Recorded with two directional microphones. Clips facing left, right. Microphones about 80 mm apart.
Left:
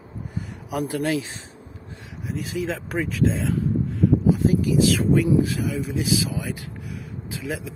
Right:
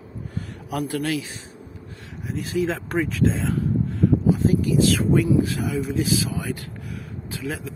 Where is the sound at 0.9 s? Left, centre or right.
Left.